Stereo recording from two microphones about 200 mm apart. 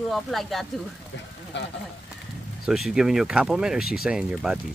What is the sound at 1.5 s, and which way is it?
Speech, 60° left (ahead or behind).